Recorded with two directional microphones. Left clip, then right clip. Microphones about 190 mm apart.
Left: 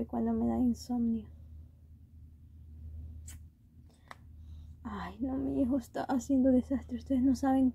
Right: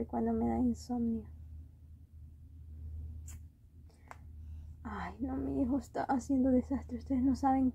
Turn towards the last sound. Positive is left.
turn(degrees=30)  # may be behind; listen again after turning